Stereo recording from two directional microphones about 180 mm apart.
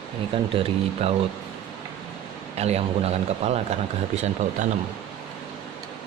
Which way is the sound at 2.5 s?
35° right (ahead or behind).